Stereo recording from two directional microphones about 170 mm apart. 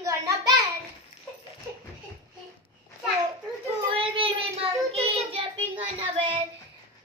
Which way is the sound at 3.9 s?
30° right (ahead or behind).